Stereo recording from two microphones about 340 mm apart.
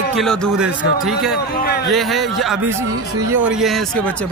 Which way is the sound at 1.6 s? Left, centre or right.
Left.